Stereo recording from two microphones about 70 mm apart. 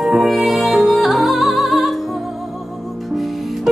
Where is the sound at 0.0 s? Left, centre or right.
Centre.